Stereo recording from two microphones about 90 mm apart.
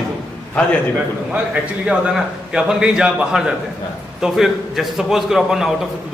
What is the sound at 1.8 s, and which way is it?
A man's voice, 5° right (ahead or behind).